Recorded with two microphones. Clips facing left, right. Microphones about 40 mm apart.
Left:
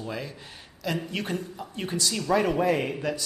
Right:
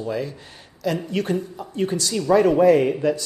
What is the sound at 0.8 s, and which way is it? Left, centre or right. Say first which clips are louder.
Speech: right 6 dB; centre.